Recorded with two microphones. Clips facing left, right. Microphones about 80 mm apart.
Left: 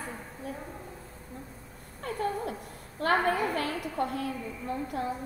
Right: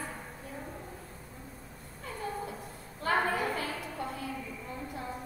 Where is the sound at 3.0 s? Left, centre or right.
Left.